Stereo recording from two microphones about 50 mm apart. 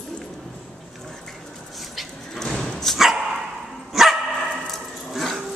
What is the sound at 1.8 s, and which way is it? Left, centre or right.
Vehicle, centre.